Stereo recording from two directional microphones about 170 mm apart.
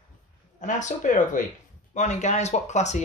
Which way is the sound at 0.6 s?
45° left (ahead or behind).